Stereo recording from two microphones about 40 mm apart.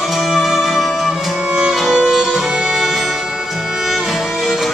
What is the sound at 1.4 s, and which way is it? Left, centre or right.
Music, centre.